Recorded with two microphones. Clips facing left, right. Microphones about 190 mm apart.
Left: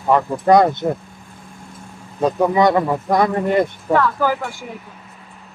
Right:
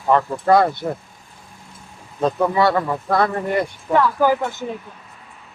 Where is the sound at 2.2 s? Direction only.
15° left (ahead or behind).